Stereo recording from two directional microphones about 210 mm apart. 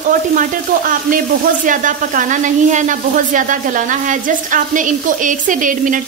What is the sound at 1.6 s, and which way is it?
Speech, 40° right (ahead or behind).